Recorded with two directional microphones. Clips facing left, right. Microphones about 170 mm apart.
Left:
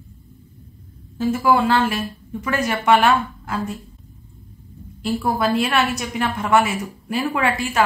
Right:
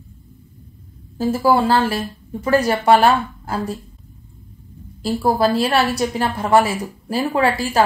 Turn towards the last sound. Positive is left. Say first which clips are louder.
# right 3 dB
turn(degrees=-30)  # may be behind; listen again after turning